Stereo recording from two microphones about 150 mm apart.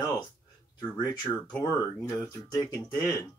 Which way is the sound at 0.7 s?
25° left (ahead or behind).